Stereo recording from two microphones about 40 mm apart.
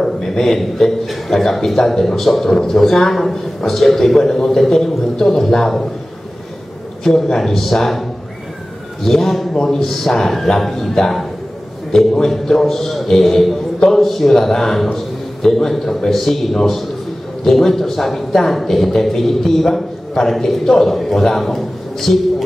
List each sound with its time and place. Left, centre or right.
0.0 s a man's voice: centre
7.2 s a man's voice: centre
9.0 s a man's voice: centre